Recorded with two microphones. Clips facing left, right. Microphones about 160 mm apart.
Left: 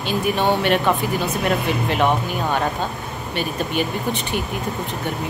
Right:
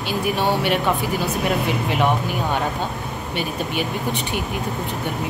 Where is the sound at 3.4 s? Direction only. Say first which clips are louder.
Left 2 dB; 15° right (ahead or behind).